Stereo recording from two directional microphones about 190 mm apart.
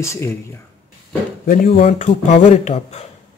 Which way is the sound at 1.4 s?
45° left (ahead or behind).